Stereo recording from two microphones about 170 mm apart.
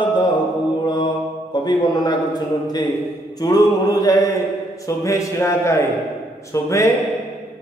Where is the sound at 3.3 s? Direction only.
20° left (ahead or behind).